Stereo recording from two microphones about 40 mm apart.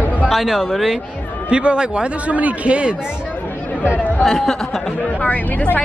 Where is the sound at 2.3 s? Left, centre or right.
Right.